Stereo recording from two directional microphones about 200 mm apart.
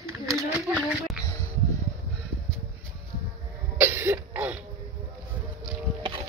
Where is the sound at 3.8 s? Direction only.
10° right (ahead or behind).